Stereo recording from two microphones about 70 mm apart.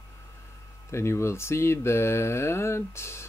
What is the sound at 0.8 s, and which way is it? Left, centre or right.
Speech, left.